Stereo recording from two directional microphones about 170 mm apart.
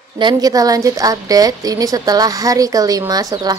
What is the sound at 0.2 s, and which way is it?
A woman's voice, 25° right (ahead or behind).